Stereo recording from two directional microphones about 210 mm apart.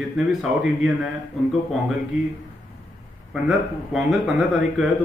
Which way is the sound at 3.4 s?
Centre (ahead or behind).